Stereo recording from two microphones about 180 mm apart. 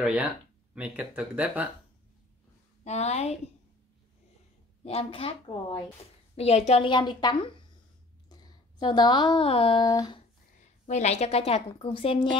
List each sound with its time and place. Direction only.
0.0 s speech: 5° right (ahead or behind)
2.8 s a woman's voice: 40° left (ahead or behind)
4.8 s a woman's voice: 35° left (ahead or behind)
10.9 s a woman's voice: 40° left (ahead or behind)